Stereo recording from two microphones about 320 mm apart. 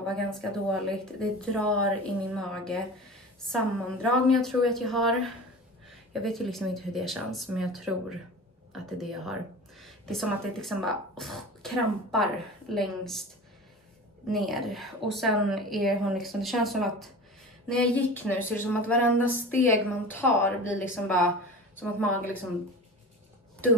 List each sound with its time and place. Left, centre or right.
0.1 s speech: centre
14.3 s a woman's voice: centre